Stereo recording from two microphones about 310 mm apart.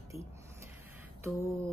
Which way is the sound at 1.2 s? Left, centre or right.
Centre.